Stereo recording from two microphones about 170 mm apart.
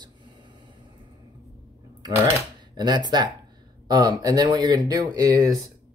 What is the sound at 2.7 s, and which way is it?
Speech, 25° right (ahead or behind).